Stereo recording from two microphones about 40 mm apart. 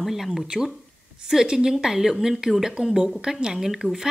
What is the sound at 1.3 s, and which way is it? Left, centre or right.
Speech, centre.